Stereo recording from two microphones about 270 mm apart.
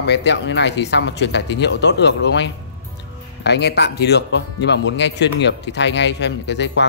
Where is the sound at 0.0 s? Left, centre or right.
Left.